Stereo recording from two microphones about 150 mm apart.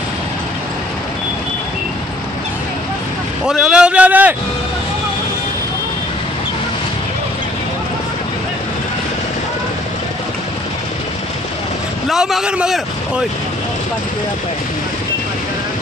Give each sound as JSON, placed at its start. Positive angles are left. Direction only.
{"t": 3.4, "sound": "a man's voice", "side_deg": -5}
{"t": 12.1, "sound": "speech", "side_deg": 0}